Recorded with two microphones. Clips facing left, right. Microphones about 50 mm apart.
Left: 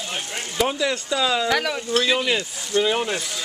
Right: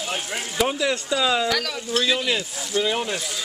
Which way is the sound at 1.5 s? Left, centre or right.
Centre.